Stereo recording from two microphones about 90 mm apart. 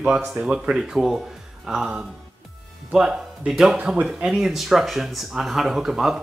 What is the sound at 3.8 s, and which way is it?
Speech, 15° right (ahead or behind).